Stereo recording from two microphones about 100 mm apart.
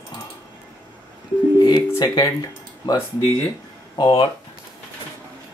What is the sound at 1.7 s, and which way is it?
Speech, 45° left (ahead or behind).